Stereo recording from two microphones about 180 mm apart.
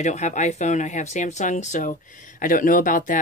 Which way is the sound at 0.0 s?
40° left (ahead or behind).